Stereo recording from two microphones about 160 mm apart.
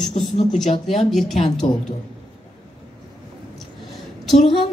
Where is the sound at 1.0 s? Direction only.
Centre (ahead or behind).